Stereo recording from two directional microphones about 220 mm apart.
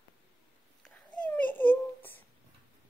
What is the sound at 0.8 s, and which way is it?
Babbling, 5° left (ahead or behind).